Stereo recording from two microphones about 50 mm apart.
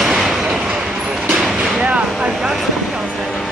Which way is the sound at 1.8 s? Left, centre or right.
Right.